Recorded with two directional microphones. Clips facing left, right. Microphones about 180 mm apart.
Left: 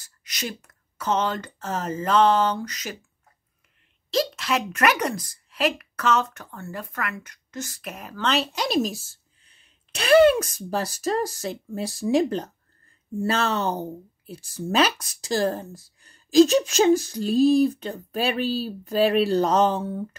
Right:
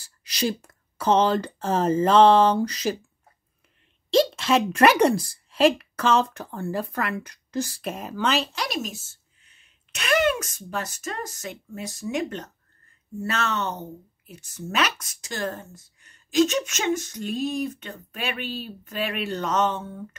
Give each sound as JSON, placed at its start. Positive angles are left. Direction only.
{"t": 0.0, "sound": "speech", "side_deg": -30}
{"t": 4.1, "sound": "a woman's voice", "side_deg": -25}
{"t": 8.2, "sound": "speech", "side_deg": 0}
{"t": 8.5, "sound": "speech", "side_deg": 30}